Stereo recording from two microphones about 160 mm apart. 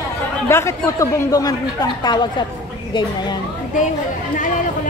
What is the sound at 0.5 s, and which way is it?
Speech, 15° left (ahead or behind).